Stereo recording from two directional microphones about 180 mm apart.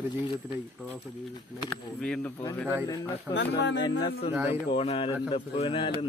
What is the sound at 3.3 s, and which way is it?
Speech, 80° left.